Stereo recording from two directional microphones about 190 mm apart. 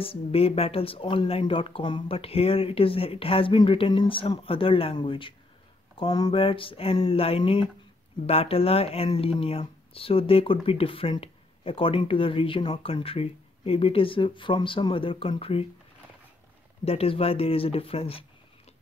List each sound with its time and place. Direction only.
0.0 s speech: 30° left (ahead or behind)
16.8 s speech: 30° left (ahead or behind)